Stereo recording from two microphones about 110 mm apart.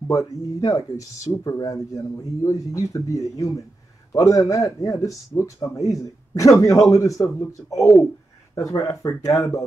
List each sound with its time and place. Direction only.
0.1 s a man's voice: 30° left (ahead or behind)